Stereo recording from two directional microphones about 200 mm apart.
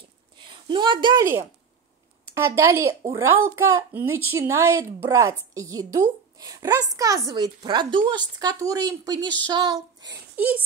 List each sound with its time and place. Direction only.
0.4 s a sound: 25° right (ahead or behind)
2.3 s speech: 15° right (ahead or behind)
10.3 s speech: 5° right (ahead or behind)